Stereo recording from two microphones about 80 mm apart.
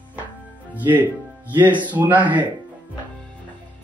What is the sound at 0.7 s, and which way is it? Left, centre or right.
Speech, right.